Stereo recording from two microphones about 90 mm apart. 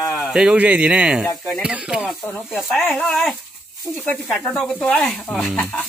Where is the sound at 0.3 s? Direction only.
10° right (ahead or behind).